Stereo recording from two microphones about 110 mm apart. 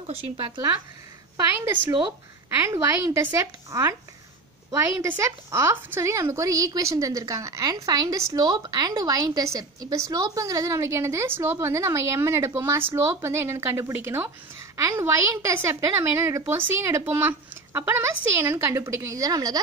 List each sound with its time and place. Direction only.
0.0 s speech: 60° right (ahead or behind)
1.3 s a woman's voice: 25° right (ahead or behind)